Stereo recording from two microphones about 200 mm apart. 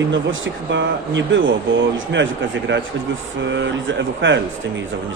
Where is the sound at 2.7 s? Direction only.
65° right (ahead or behind).